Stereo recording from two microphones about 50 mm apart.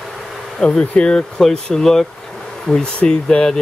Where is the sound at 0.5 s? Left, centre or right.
Centre.